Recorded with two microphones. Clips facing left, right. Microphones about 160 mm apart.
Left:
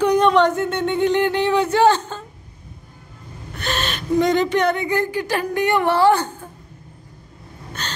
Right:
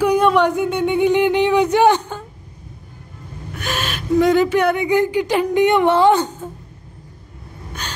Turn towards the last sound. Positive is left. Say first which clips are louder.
# even
turn(degrees=-10)  # may be behind; listen again after turning